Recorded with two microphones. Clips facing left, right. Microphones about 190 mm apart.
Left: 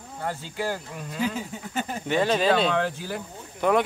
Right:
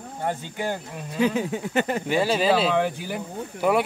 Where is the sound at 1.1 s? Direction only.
70° right (ahead or behind).